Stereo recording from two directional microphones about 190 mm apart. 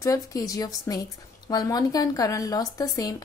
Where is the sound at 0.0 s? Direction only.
15° left (ahead or behind).